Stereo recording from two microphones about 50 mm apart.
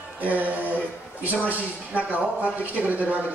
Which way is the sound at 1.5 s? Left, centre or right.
Right.